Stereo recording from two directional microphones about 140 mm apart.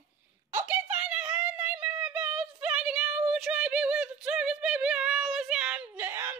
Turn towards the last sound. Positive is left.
turn(degrees=-15)  # may be behind; listen again after turning